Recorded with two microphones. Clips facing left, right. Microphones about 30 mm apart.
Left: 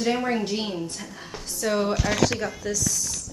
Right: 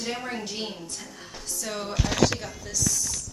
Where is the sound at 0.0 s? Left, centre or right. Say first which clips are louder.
Left 8 dB; centre.